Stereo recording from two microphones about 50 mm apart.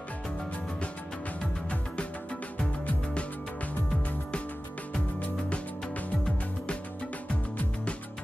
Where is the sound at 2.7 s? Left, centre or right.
Left.